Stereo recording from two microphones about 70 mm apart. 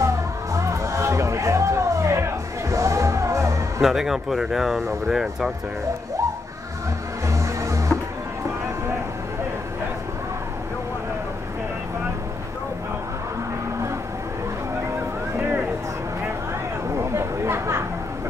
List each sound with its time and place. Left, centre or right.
0.0 s music: right
3.8 s speech: centre
7.2 s music: right
15.3 s a sound: right
16.9 s chatter: right